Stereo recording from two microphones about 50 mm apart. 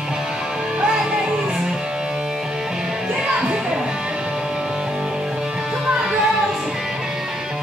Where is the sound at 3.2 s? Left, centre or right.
Centre.